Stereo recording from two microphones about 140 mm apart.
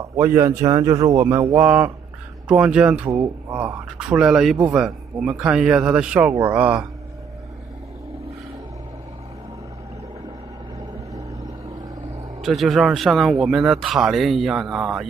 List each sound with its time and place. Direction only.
0.1 s a man's voice: 20° right (ahead or behind)
12.4 s speech: centre (ahead or behind)